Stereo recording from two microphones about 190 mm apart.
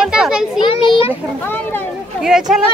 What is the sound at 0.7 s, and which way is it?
Speech, 30° left (ahead or behind).